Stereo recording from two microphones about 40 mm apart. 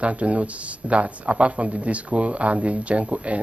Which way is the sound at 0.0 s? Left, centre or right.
Right.